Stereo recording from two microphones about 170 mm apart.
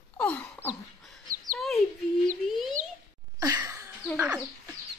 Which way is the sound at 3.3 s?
20° right (ahead or behind).